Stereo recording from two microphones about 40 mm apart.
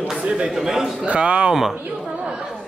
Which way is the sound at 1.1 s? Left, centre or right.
Right.